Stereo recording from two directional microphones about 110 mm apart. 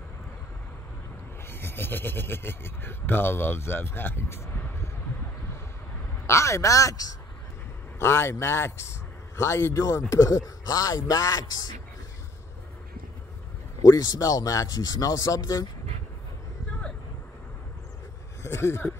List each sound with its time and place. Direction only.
1.5 s speech: 20° left (ahead or behind)
6.2 s speech: 25° left (ahead or behind)
13.8 s speech: 30° left (ahead or behind)
18.4 s speech: 25° left (ahead or behind)